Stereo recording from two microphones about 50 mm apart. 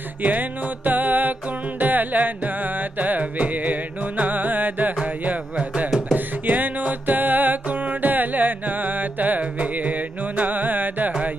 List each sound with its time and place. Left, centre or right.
0.2 s music: right